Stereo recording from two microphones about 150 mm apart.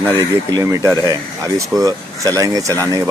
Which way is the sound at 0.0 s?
25° right (ahead or behind).